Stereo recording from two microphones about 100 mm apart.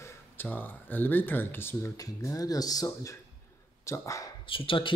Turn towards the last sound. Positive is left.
turn(degrees=60)  # may be behind; listen again after turning